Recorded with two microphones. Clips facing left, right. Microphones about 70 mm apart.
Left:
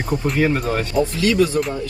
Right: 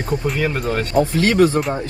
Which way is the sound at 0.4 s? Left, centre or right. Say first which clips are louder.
Left 2 dB; centre.